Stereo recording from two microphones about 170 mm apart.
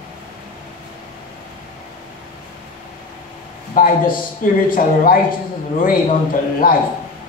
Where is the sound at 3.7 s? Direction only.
55° left (ahead or behind).